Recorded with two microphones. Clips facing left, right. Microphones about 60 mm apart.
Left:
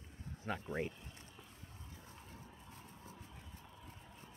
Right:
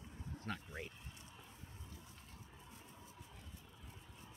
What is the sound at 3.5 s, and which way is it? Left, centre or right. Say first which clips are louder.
Vehicle: left 3 dB; left.